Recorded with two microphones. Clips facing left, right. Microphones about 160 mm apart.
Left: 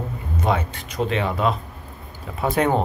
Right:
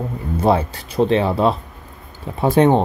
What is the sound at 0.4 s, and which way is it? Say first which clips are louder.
Speech: right 6 dB; 35° right (ahead or behind).